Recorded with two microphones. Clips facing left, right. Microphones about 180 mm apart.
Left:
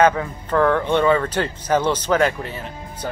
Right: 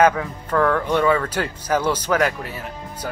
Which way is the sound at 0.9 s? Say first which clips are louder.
Left 1 dB; 5° right (ahead or behind).